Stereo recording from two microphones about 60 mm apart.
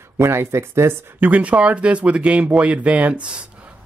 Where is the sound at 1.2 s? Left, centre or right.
Right.